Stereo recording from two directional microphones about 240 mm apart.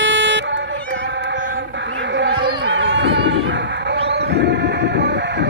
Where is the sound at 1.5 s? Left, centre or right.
Right.